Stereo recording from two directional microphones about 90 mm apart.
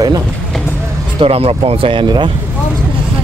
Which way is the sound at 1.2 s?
90° right.